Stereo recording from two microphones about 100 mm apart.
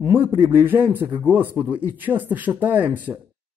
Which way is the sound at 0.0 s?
20° right (ahead or behind).